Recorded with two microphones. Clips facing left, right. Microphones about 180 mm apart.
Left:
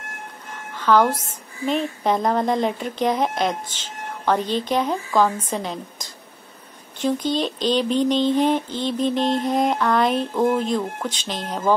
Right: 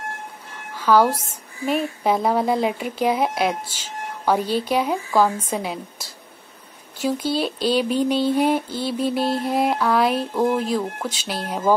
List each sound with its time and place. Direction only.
0.7 s a woman's voice: 10° right (ahead or behind)